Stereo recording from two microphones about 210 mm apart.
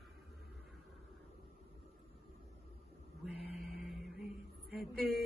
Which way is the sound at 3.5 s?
Centre (ahead or behind).